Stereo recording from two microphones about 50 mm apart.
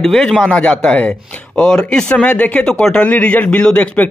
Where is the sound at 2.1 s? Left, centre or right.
Left.